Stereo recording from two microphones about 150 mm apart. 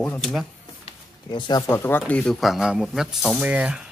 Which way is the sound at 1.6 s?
15° left (ahead or behind).